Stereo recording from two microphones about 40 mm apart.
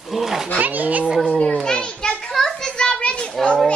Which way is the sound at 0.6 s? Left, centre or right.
Right.